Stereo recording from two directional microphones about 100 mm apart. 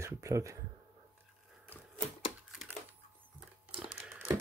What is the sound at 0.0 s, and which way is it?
Speech, 30° right (ahead or behind).